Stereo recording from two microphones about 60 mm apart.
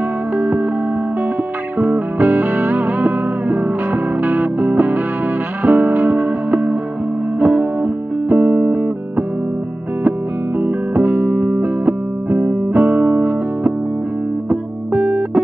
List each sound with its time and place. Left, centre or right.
0.4 s music: right
1.8 s music: right
10.6 s music: right
15.0 s music: centre